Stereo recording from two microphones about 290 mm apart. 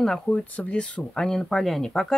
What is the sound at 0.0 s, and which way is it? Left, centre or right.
Speech, centre.